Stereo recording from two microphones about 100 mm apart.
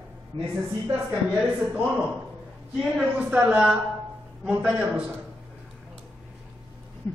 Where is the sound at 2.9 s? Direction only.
10° right (ahead or behind).